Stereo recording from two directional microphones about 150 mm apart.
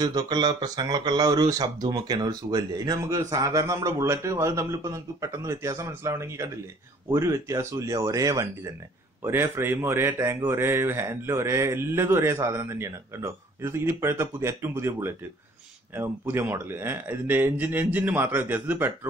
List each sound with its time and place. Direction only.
0.0 s speech: 25° right (ahead or behind); by 18.9 s 10° right (ahead or behind)